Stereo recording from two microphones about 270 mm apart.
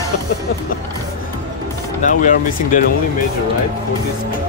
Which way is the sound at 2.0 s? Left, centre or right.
Left.